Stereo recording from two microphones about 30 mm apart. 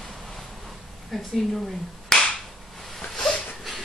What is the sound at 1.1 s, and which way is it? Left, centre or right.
Speech, centre.